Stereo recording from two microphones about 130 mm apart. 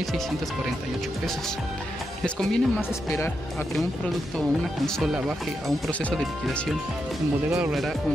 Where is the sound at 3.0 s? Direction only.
20° left (ahead or behind).